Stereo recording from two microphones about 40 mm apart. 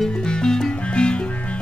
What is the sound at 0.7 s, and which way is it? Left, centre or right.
Music, left.